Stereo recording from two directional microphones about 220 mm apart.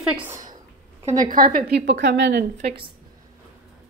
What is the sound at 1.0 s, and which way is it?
A woman's voice, 35° right (ahead or behind).